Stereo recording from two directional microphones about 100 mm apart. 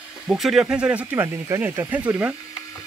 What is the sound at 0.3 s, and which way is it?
Speech, 5° right (ahead or behind).